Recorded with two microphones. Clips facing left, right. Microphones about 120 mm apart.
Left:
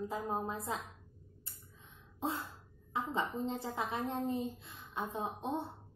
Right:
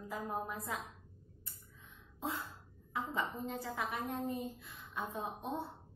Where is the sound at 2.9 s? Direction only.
25° left (ahead or behind).